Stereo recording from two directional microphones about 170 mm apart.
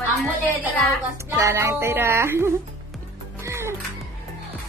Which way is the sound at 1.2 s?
20° right (ahead or behind).